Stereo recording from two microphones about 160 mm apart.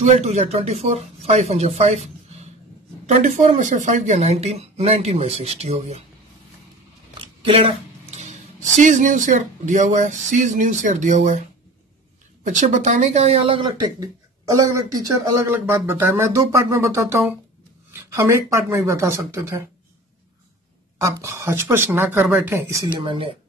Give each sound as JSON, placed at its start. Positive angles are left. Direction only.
{"t": 0.0, "sound": "speech", "side_deg": -45}
{"t": 7.2, "sound": "speech", "side_deg": -35}
{"t": 12.4, "sound": "speech", "side_deg": -50}
{"t": 15.4, "sound": "speech", "side_deg": -15}
{"t": 21.0, "sound": "speech", "side_deg": -20}
{"t": 22.9, "sound": "speech", "side_deg": -35}